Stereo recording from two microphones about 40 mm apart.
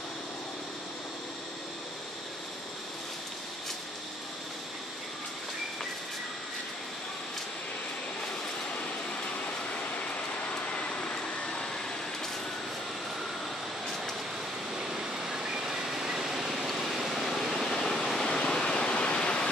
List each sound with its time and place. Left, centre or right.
9.7 s vehicle: left; by 11.7 s centre
14.8 s vehicle: centre
17.3 s waterfall: centre; by 19.4 s left